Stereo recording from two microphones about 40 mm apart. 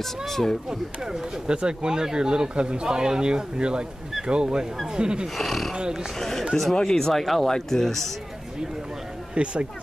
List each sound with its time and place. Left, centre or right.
0.0 s speech: centre
0.7 s speech: right
5.4 s speech: centre
5.8 s speech: centre
6.1 s speech: centre
9.3 s speech: right